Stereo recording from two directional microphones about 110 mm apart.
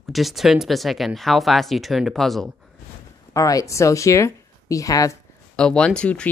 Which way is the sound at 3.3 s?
30° left (ahead or behind).